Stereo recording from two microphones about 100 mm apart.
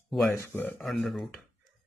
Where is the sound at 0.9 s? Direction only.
Centre (ahead or behind).